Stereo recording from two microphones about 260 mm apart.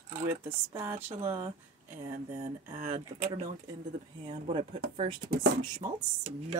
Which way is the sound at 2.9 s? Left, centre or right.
Right.